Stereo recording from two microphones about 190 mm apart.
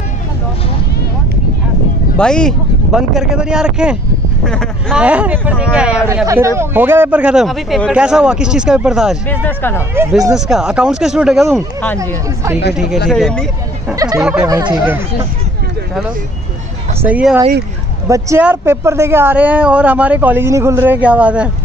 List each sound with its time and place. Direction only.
2.1 s speech: 5° left (ahead or behind)
9.3 s speech: 10° left (ahead or behind)
10.3 s speech: 5° right (ahead or behind)
12.7 s speech: centre (ahead or behind)
13.9 s a sound: 20° right (ahead or behind)
14.2 s speech: 5° right (ahead or behind)
14.5 s speech: 20° right (ahead or behind)
17.0 s speech: 5° right (ahead or behind)